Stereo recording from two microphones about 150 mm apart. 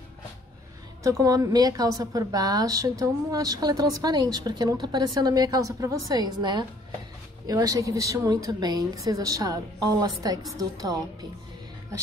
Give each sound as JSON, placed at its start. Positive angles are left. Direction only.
{"t": 1.0, "sound": "a woman's voice", "side_deg": -20}